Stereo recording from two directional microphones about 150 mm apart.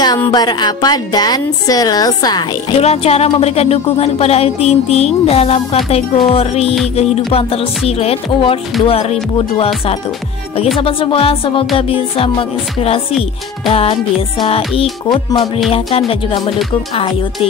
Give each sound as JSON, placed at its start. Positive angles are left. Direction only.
{"t": 0.3, "sound": "a woman's voice", "side_deg": 30}
{"t": 2.8, "sound": "music", "side_deg": 45}
{"t": 10.8, "sound": "music", "side_deg": 35}